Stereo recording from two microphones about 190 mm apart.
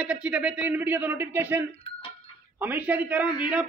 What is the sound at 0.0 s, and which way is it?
A man's voice, 5° right (ahead or behind).